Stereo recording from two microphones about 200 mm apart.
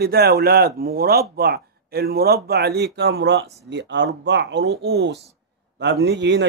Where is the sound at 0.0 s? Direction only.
50° right (ahead or behind).